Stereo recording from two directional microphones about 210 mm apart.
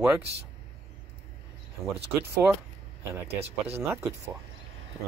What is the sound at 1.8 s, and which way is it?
Speech, 15° right (ahead or behind).